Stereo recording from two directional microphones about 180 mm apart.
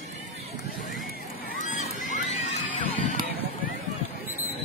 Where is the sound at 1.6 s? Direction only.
40° left (ahead or behind).